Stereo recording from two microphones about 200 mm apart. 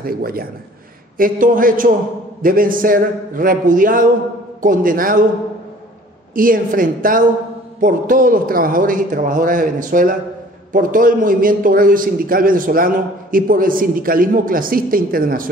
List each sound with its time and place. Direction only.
0.0 s a man's voice: 45° right (ahead or behind)
6.3 s a man's voice: 45° right (ahead or behind)